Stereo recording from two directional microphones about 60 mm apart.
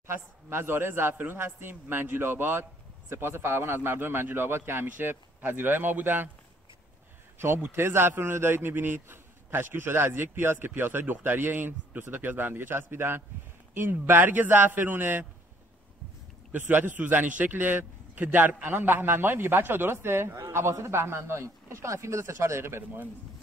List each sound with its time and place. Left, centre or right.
0.0 s a man's voice: right
7.3 s a man's voice: right
16.5 s a man's voice: right